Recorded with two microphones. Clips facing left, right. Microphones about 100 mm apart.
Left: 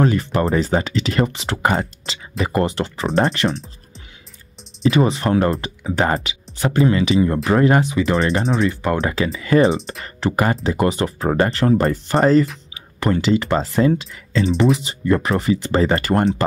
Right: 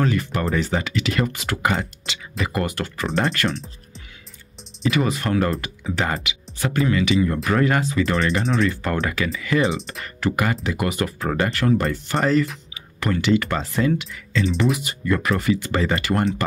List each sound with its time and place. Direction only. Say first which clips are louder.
0.0 s speech: left 4 dB; 30° left (ahead or behind)
4.9 s speech: left 4 dB; 25° left (ahead or behind)
8.1 s speech: left 3 dB; 35° left (ahead or behind)
12.7 s a sound: left 5 dB; 30° left (ahead or behind)
13.6 s speech: left 4 dB; 35° left (ahead or behind)